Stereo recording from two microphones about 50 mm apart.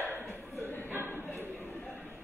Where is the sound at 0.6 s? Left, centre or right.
Left.